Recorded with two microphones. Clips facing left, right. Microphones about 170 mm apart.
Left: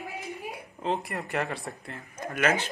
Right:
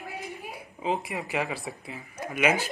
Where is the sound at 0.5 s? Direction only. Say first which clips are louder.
Right 1 dB; centre (ahead or behind).